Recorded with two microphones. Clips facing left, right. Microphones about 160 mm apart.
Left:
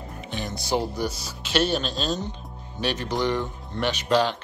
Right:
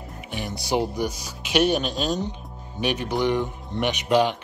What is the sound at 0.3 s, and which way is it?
Speech, 10° right (ahead or behind).